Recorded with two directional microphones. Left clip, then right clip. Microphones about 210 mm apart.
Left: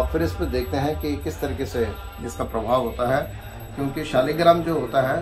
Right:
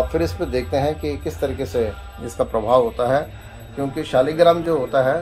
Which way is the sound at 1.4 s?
45° right (ahead or behind).